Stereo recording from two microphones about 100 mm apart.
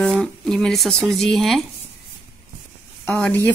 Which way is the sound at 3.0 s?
15° left (ahead or behind).